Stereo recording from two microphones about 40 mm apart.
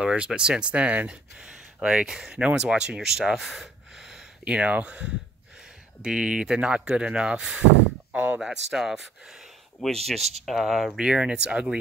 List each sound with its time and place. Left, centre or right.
0.0 s speech: right
0.7 s speech: right
3.0 s gasp: centre
4.5 s speech: right
8.1 s speech: right
8.6 s speech: centre
9.8 s speech: centre
10.9 s speech: right